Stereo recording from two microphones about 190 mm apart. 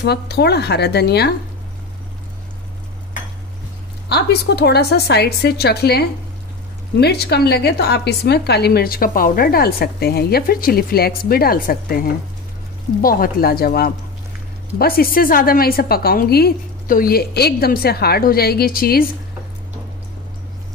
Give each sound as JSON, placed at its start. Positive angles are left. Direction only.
{"t": 0.0, "sound": "a woman's voice", "side_deg": 60}
{"t": 4.1, "sound": "a woman's voice", "side_deg": 60}